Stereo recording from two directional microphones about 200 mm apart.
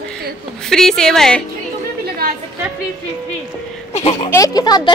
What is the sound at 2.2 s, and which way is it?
Chatter, 45° right (ahead or behind).